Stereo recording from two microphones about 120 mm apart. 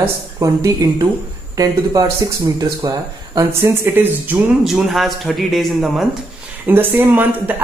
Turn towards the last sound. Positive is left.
turn(degrees=-15)  # may be behind; listen again after turning